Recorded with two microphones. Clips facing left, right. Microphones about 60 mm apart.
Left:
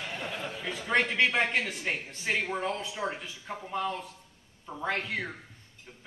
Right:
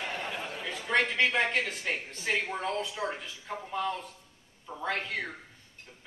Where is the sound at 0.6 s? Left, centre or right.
Centre.